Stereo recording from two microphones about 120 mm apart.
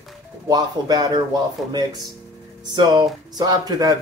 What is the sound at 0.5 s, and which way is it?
Speech, 35° right (ahead or behind).